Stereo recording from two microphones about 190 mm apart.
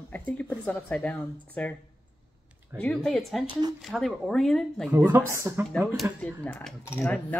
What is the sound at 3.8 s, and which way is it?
Speech, centre (ahead or behind).